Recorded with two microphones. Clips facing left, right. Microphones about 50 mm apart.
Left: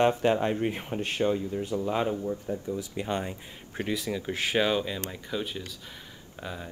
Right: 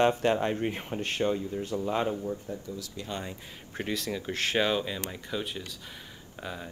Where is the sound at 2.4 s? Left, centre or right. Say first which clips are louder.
Left 5 dB; left.